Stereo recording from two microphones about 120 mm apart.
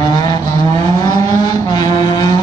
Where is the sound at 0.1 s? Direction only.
35° left (ahead or behind).